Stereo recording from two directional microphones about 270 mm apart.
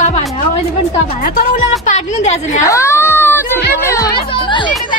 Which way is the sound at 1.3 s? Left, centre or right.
Left.